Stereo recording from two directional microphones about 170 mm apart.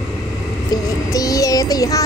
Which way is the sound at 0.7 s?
20° left (ahead or behind).